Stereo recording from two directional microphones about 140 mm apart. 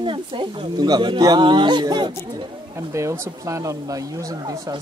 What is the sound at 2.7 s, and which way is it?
Speech, 20° right (ahead or behind).